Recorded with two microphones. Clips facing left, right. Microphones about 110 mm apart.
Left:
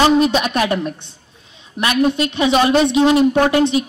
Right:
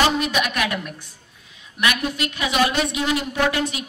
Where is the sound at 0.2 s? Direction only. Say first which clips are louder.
Left 7 dB; 30° left (ahead or behind).